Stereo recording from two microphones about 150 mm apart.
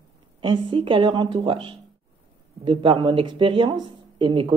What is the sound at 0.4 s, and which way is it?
A woman's voice, 35° right (ahead or behind).